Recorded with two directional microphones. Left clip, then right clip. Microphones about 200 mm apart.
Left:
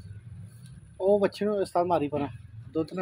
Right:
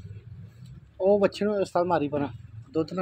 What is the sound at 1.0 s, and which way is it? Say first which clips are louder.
Speech: right 2 dB; 15° right (ahead or behind).